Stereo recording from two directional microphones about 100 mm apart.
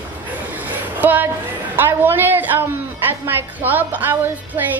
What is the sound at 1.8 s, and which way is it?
A woman's voice, 20° right (ahead or behind).